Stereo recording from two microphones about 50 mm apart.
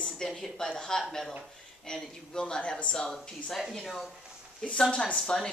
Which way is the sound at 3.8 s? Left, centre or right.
Centre.